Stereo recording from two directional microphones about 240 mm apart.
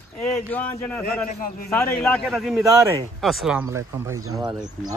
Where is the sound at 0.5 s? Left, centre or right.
Centre.